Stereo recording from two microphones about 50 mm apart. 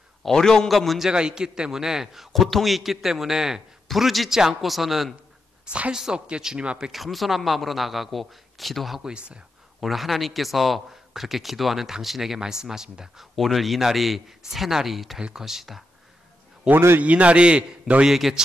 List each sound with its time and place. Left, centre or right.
0.3 s a man's voice: centre
1.0 s a man's voice: centre
2.3 s a man's voice: centre
5.7 s a man's voice: right
6.9 s a man's voice: centre
9.0 s a man's voice: centre
9.8 s a man's voice: centre
13.4 s a man's voice: centre
15.1 s a man's voice: centre
17.0 s a man's voice: right
18.0 s a man's voice: centre